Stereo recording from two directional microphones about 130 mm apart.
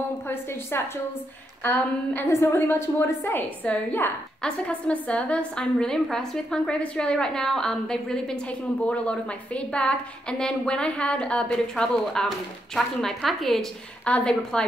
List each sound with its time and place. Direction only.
0.3 s a woman's voice: 20° left (ahead or behind)